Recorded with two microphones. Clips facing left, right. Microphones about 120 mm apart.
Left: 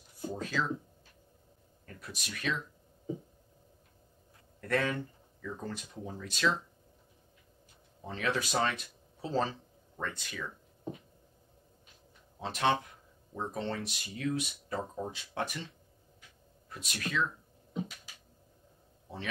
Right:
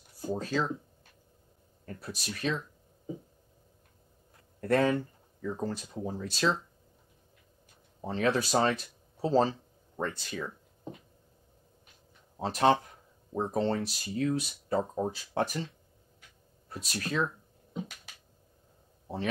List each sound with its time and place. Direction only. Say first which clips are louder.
0.2 s speech: right 4 dB; 35° right (ahead or behind)
1.9 s speech: right 5 dB; 35° right (ahead or behind)
4.6 s speech: right 6 dB; 35° right (ahead or behind)
8.0 s speech: right 5 dB; 35° right (ahead or behind)
12.4 s speech: right 5 dB; 40° right (ahead or behind)
16.6 s speech: right 3 dB; 35° right (ahead or behind)